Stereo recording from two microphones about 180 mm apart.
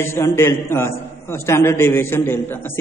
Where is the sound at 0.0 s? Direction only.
15° left (ahead or behind).